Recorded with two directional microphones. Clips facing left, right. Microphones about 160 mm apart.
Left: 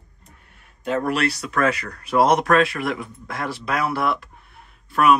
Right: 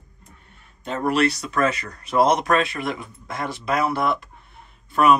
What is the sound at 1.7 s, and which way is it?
Speech, 60° left (ahead or behind).